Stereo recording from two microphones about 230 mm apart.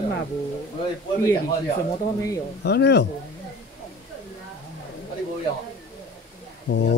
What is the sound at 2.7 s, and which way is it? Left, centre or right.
Speech, left.